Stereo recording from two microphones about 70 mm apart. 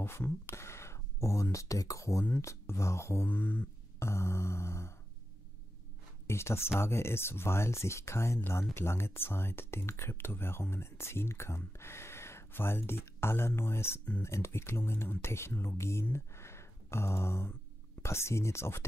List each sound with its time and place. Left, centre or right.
0.0 s speech: left
3.3 s speech: left
4.0 s speech: left
6.2 s speech: left